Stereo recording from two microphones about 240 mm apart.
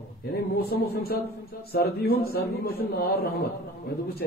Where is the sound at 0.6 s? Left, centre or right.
Left.